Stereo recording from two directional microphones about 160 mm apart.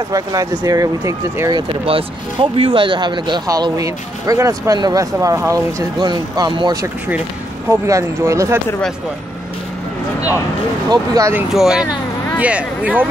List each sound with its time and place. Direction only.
0.1 s speech: 20° right (ahead or behind)
1.9 s speech: 35° right (ahead or behind); by 8.5 s 15° right (ahead or behind)
10.9 s speech: 20° right (ahead or behind)
11.5 s speech: 5° right (ahead or behind)